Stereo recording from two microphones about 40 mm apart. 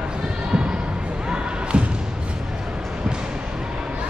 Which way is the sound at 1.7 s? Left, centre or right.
Right.